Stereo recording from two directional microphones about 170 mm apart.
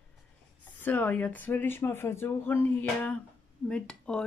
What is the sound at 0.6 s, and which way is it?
Speech, 10° left (ahead or behind).